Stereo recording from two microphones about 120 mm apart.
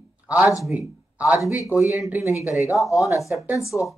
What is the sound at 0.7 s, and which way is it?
Speech, 10° right (ahead or behind).